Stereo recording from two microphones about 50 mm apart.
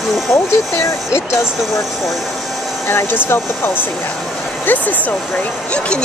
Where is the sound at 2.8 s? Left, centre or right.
Left.